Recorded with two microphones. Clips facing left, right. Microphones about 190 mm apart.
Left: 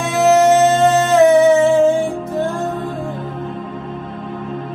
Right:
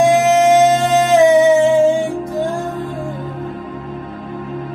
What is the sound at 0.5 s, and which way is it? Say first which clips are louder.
Music: even; 15° right (ahead or behind).